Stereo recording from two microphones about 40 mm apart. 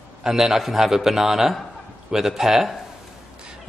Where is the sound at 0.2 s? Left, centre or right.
Centre.